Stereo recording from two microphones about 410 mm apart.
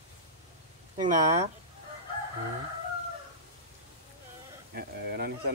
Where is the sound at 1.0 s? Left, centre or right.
Centre.